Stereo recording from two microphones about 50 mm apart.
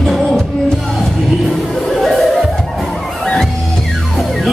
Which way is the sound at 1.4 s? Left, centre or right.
Centre.